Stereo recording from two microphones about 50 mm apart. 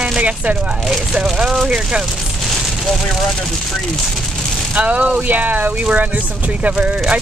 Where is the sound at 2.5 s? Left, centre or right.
Centre.